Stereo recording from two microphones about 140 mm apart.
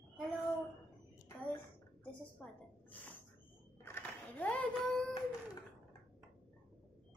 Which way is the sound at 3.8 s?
15° left (ahead or behind).